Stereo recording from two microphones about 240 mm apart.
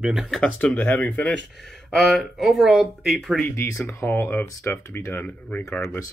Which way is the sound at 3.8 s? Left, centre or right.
Centre.